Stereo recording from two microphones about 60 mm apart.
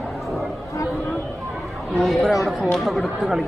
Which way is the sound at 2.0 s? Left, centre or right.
Centre.